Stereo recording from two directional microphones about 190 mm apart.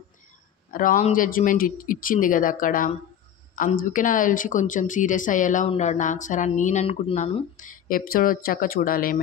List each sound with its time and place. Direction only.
0.7 s speech: 45° left (ahead or behind)
7.5 s speech: 45° left (ahead or behind)